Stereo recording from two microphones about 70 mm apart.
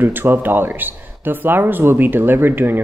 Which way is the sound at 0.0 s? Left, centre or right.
Right.